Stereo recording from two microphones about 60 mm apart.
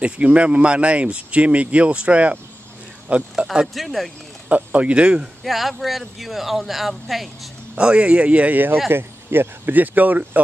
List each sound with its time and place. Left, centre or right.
0.0 s speech: right
3.6 s speech: centre
4.5 s speech: right
5.4 s speech: centre
7.7 s speech: centre